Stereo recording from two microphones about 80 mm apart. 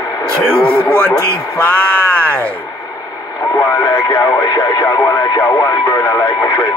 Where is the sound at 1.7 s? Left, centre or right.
Centre.